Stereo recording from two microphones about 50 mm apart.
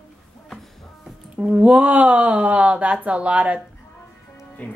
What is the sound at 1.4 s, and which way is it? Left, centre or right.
Speech, right.